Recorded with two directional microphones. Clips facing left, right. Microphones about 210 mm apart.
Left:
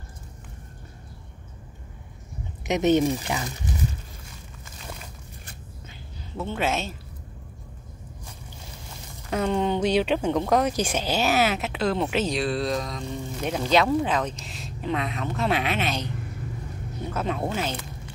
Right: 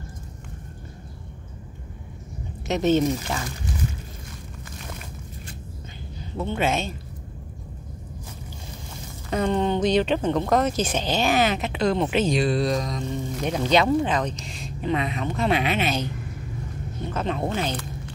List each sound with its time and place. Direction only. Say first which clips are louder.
2.6 s speech: even; 15° left (ahead or behind)
6.4 s speech: right 2 dB; centre (ahead or behind)
9.3 s speech: right 1 dB; 5° left (ahead or behind)